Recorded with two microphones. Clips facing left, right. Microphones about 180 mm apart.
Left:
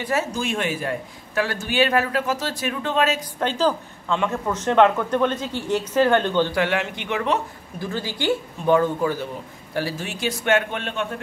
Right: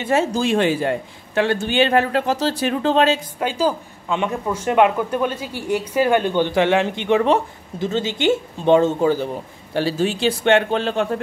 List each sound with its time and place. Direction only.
0.0 s a man's voice: 25° right (ahead or behind)
3.3 s a man's voice: 10° right (ahead or behind); by 11.1 s 35° right (ahead or behind)